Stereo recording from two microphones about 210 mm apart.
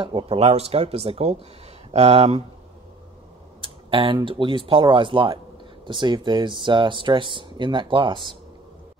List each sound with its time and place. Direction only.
0.0 s speech: 25° right (ahead or behind)
3.6 s speech: 25° right (ahead or behind)